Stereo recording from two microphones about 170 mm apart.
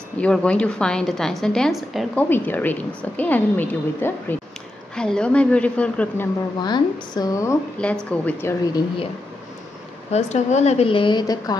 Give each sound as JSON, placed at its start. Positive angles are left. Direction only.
{"t": 0.2, "sound": "a woman's voice", "side_deg": 5}
{"t": 2.2, "sound": "a woman's voice", "side_deg": 10}
{"t": 6.6, "sound": "a woman's voice", "side_deg": 25}
{"t": 7.8, "sound": "a woman's voice", "side_deg": 5}
{"t": 10.1, "sound": "a woman's voice", "side_deg": 40}